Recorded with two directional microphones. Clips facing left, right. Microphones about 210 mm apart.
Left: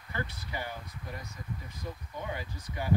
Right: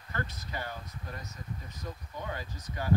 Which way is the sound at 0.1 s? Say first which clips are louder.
Even; 15° left (ahead or behind).